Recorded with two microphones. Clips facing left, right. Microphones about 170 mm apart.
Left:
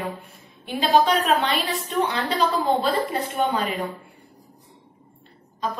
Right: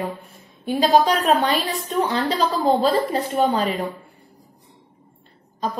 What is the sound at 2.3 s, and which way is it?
A woman's voice, 40° right (ahead or behind).